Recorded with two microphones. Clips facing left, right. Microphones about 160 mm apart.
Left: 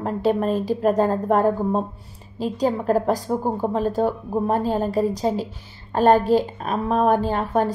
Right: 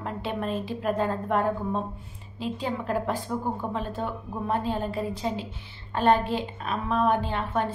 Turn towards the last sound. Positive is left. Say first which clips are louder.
# left 7 dB
turn(degrees=40)  # may be behind; listen again after turning